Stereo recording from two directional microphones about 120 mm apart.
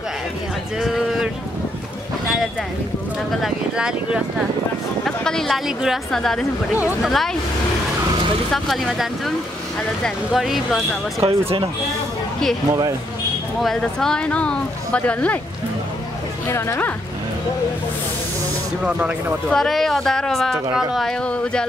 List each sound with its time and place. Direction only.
0.7 s a sound: centre (ahead or behind)
3.3 s speech: centre (ahead or behind)
5.0 s speech: 5° left (ahead or behind)
8.5 s speech: centre (ahead or behind)
11.2 s speech: 50° right (ahead or behind)
13.6 s speech: 5° left (ahead or behind)
16.4 s speech: 20° left (ahead or behind)
18.9 s speech: 10° right (ahead or behind)
19.5 s speech: 5° left (ahead or behind)
21.3 s speech: 10° left (ahead or behind)